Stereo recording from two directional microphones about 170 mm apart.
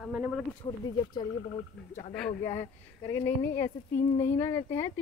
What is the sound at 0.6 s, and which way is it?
Speech, 30° left (ahead or behind).